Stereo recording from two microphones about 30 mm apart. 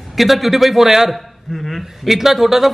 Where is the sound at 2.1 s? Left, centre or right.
Centre.